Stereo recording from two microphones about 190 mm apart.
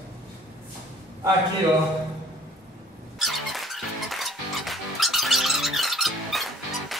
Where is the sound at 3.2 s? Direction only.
Centre (ahead or behind).